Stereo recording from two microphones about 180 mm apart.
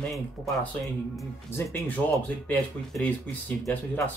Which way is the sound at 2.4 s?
10° left (ahead or behind).